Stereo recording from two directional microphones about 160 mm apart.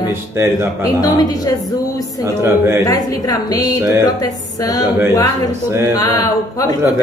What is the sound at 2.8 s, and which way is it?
A woman's voice, 20° left (ahead or behind).